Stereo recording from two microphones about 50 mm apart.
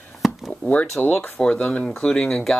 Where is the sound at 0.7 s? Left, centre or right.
Left.